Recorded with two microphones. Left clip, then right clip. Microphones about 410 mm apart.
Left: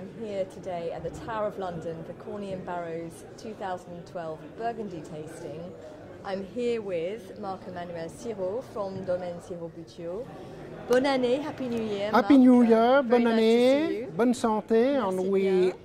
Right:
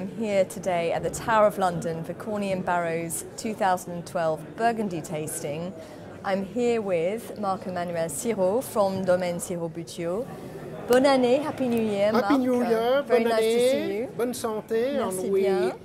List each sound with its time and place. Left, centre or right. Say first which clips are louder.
0.2 s a woman's voice: right 8 dB; right
6.2 s speech: right 5 dB; right
10.9 s speech: right 4 dB; right
12.1 s a woman's voice: left 8 dB; left